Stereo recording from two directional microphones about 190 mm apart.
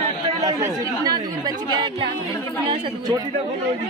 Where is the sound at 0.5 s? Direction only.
15° right (ahead or behind).